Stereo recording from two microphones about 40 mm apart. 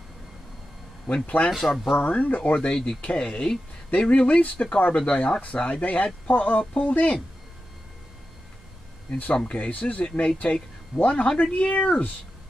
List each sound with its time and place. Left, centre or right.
1.0 s speech: left
2.7 s speech: centre
3.0 s speech: left
9.1 s speech: left